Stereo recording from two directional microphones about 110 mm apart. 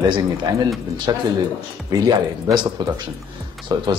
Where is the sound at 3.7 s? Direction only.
40° right (ahead or behind).